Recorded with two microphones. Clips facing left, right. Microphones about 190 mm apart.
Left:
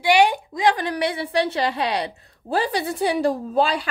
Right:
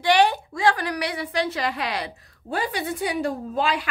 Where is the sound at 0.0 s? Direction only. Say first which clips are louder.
Left 2 dB; 10° left (ahead or behind).